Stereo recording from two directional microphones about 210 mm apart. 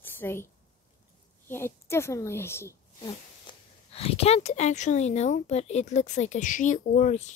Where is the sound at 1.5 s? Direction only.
10° left (ahead or behind).